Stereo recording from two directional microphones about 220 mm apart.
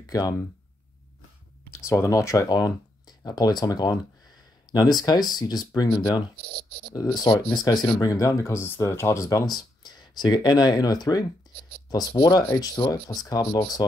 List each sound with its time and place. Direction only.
0.0 s speech: 15° left (ahead or behind)
1.9 s speech: 15° left (ahead or behind)
6.3 s speech: 45° right (ahead or behind)
7.0 s speech: 15° left (ahead or behind)